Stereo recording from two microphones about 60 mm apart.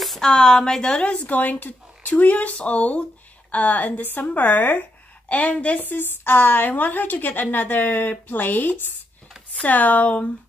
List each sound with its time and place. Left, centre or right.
0.2 s a woman's voice: centre